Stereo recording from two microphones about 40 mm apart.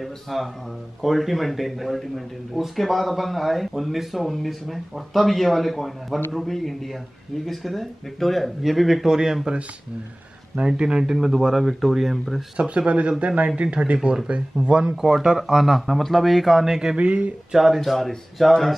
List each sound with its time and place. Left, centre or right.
0.0 s speech: centre
10.7 s speech: centre
12.5 s speech: right; by 16.6 s centre
16.6 s speech: centre
16.9 s speech: right
17.5 s speech: centre
17.7 s speech: centre